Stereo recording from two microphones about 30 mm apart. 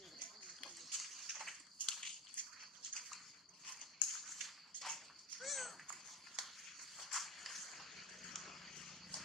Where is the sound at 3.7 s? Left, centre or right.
Centre.